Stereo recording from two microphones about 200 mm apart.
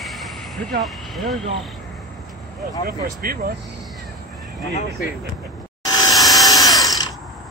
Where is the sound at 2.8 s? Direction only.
50° right (ahead or behind).